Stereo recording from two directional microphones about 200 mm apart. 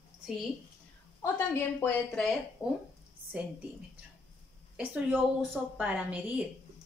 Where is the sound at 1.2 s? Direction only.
10° left (ahead or behind).